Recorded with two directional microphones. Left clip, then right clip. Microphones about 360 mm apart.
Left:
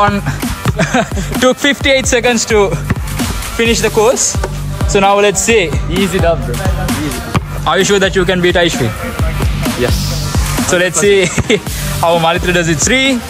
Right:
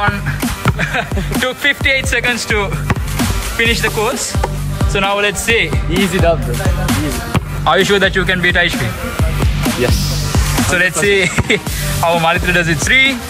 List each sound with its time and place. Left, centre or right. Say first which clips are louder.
1.0 s speech: left 4 dB; centre
5.9 s speech: left 1 dB; centre
7.3 s speech: even; centre